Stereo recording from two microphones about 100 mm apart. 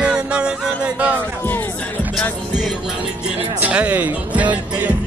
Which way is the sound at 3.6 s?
15° right (ahead or behind).